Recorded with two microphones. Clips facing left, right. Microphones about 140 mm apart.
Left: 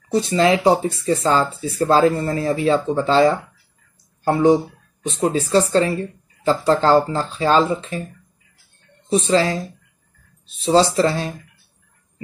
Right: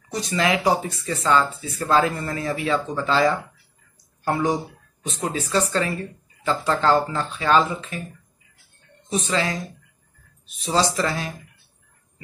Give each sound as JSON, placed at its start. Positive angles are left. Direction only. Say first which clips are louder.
{"t": 0.1, "sound": "speech", "louder": "left 6 dB", "side_deg": 30}
{"t": 9.1, "sound": "speech", "louder": "left 7 dB", "side_deg": 30}